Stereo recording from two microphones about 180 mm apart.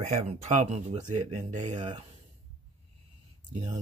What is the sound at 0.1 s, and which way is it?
Speech, 40° right (ahead or behind).